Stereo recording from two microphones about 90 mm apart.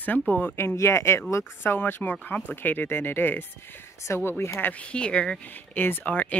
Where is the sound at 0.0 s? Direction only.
20° left (ahead or behind).